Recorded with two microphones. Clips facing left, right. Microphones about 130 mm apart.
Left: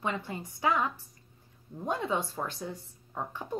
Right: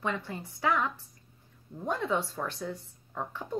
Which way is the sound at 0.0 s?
15° left (ahead or behind).